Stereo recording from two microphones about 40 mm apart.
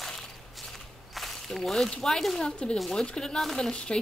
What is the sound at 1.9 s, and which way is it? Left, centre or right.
Speech, centre.